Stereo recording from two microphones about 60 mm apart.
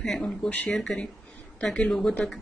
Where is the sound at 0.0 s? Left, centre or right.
Centre.